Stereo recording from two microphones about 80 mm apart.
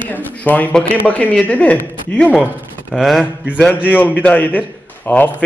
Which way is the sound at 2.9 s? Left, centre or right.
Centre.